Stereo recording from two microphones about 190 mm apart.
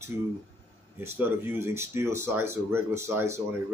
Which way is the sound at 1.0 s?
10° right (ahead or behind).